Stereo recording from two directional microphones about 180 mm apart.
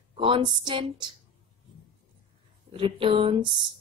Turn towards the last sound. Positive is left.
turn(degrees=-30)  # may be behind; listen again after turning